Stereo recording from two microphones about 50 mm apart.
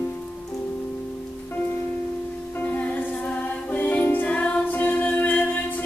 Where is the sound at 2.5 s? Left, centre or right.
Left.